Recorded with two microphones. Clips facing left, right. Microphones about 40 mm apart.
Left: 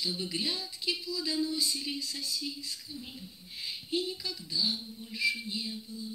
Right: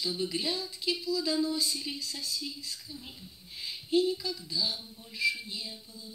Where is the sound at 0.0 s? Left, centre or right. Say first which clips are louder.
Right 2 dB; centre.